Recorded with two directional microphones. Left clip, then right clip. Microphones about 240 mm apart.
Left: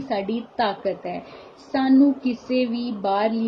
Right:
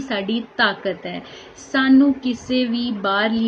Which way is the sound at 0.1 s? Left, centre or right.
Centre.